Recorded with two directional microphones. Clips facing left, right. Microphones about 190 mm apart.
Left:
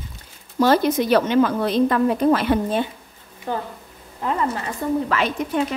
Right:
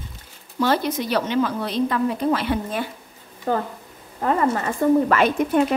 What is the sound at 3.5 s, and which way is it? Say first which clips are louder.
A woman's voice: right 4 dB; 45° right (ahead or behind).